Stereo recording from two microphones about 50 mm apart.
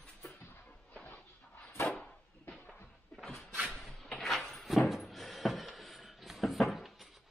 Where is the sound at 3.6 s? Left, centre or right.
Centre.